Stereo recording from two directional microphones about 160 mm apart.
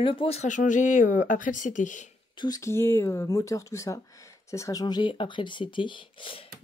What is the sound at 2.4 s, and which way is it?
Speech, 20° left (ahead or behind).